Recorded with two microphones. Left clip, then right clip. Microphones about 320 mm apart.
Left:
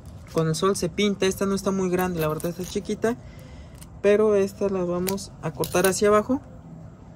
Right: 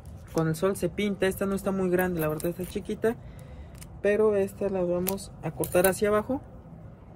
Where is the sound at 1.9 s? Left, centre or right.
Centre.